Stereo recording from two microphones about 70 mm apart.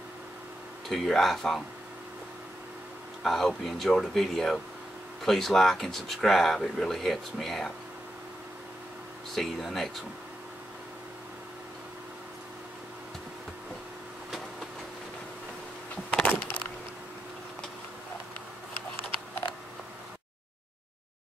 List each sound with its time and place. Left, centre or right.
0.8 s speech: centre
3.3 s speech: centre
9.3 s speech: centre
16.2 s a sound: left